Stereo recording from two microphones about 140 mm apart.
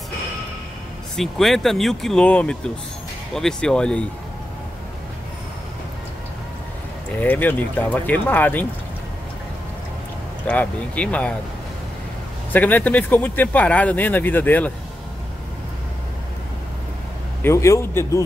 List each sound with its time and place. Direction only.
1.1 s speech: centre (ahead or behind)
7.2 s speech: 15° left (ahead or behind)
10.4 s speech: 10° left (ahead or behind)
12.5 s speech: 10° left (ahead or behind)
17.4 s a man's voice: 20° left (ahead or behind)